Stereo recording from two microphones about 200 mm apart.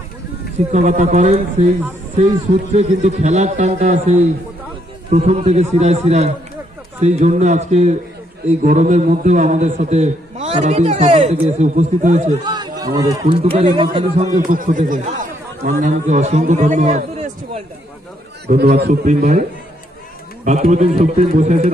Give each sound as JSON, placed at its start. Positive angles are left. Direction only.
{"t": 0.7, "sound": "a man's voice", "side_deg": -35}
{"t": 2.7, "sound": "a man's voice", "side_deg": -35}
{"t": 12.4, "sound": "run", "side_deg": -20}
{"t": 13.2, "sound": "a man's voice", "side_deg": -30}
{"t": 14.5, "sound": "speech", "side_deg": -40}
{"t": 18.5, "sound": "a man's voice", "side_deg": -50}
{"t": 19.0, "sound": "a man's voice", "side_deg": -35}
{"t": 20.4, "sound": "a man's voice", "side_deg": -35}